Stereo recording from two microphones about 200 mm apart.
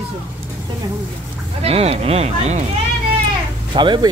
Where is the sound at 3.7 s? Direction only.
25° right (ahead or behind).